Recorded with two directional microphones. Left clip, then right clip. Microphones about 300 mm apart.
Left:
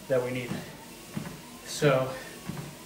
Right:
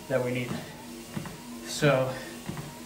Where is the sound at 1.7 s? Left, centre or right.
Centre.